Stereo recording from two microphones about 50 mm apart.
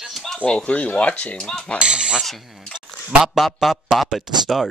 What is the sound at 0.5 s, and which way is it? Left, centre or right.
Speech, left.